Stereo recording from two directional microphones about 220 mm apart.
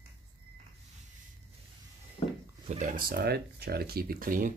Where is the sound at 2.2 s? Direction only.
20° left (ahead or behind).